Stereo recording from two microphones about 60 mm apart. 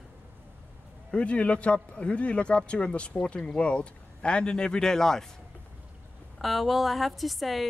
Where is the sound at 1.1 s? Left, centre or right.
Left.